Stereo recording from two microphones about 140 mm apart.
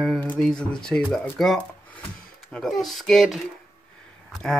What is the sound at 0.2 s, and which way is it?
Speech, 10° left (ahead or behind).